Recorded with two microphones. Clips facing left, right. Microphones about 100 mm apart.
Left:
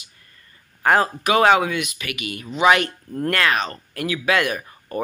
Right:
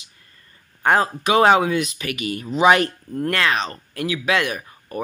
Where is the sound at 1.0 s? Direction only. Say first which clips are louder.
Right 1 dB; 20° right (ahead or behind).